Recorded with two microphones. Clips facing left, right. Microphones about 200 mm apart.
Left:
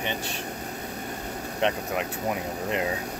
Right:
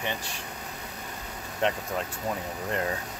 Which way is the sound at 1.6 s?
20° left (ahead or behind).